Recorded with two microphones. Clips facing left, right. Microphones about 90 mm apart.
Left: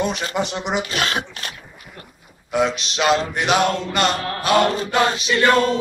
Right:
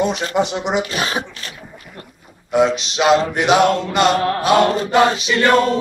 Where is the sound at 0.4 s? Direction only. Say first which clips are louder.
Right 5 dB; 20° right (ahead or behind).